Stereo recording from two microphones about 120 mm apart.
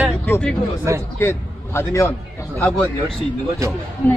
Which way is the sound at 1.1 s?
20° left (ahead or behind).